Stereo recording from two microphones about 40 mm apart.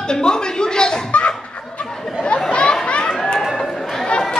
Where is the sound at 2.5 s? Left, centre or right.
Left.